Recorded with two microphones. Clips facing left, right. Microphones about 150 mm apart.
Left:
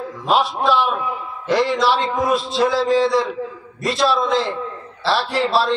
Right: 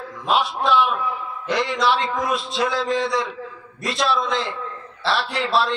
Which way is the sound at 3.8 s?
Centre (ahead or behind).